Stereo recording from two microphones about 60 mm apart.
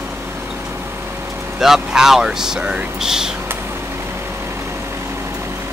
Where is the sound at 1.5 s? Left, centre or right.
Centre.